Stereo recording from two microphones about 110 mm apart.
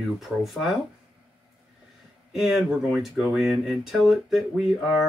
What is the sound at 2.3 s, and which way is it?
Speech, centre (ahead or behind).